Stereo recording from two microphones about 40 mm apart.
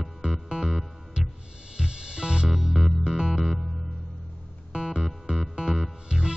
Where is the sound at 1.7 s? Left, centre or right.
Right.